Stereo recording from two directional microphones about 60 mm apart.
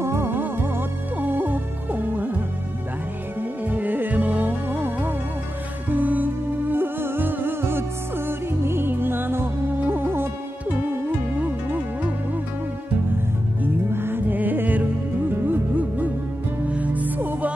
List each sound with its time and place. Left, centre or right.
0.0 s music: right
11.3 s music: right
13.6 s music: right